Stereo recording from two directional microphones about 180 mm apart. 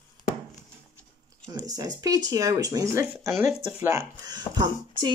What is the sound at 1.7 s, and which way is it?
Speech, 20° right (ahead or behind).